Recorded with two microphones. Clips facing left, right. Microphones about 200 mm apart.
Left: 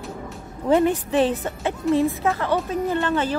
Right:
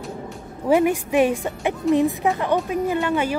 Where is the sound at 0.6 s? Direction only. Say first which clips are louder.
Right 1 dB; 10° right (ahead or behind).